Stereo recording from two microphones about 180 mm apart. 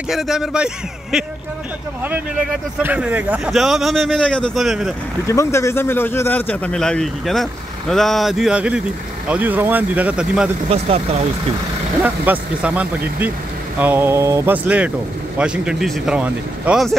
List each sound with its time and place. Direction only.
0.1 s a man's voice: centre (ahead or behind)
5.2 s a man's voice: 15° left (ahead or behind); by 10.5 s 5° right (ahead or behind)
10.7 s speech: 35° right (ahead or behind)
12.0 s a man's voice: 10° right (ahead or behind)